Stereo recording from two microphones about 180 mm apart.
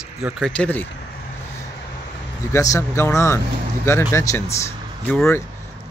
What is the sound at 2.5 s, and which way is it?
Speech, 15° left (ahead or behind).